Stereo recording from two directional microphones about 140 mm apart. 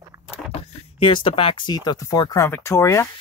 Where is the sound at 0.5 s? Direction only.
40° left (ahead or behind); by 3.0 s 20° left (ahead or behind).